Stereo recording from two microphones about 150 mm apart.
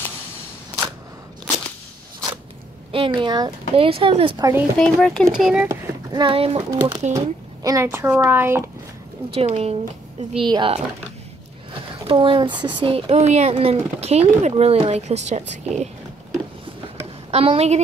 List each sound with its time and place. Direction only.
2.9 s speech: 35° right (ahead or behind)
4.7 s speech: 5° left (ahead or behind)
5.6 s a child's voice: 15° right (ahead or behind)
6.1 s speech: 35° right (ahead or behind)
7.2 s speech: 20° right (ahead or behind)
9.3 s speech: 40° right (ahead or behind)
10.3 s speech: 35° right (ahead or behind)
12.1 s speech: 35° right (ahead or behind)
17.3 s speech: 40° right (ahead or behind)